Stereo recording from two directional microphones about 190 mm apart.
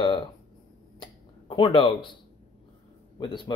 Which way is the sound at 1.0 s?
25° left (ahead or behind).